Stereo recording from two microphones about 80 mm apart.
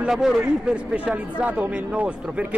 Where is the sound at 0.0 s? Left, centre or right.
Centre.